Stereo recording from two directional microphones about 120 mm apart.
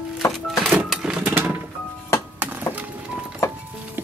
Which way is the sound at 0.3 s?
5° right (ahead or behind).